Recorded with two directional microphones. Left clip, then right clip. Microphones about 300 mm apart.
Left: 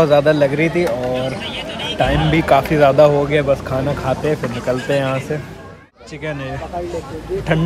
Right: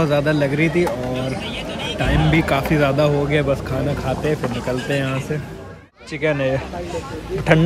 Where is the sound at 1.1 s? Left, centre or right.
Right.